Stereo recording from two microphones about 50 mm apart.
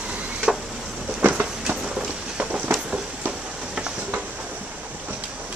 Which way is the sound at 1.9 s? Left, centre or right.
Centre.